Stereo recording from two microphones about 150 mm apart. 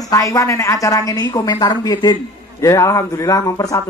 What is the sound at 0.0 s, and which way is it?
Speech, 20° left (ahead or behind).